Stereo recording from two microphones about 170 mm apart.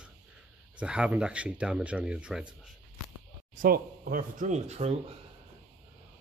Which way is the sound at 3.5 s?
55° right (ahead or behind).